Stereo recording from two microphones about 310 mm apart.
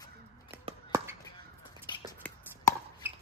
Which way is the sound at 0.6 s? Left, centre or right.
Centre.